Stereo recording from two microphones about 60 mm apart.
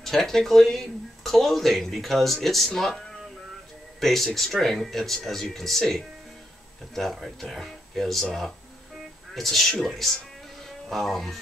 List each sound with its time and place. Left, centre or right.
0.0 s speech: centre